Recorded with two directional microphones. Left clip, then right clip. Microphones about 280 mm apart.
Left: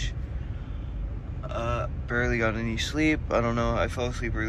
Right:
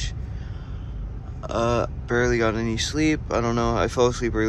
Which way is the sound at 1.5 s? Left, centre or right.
Centre.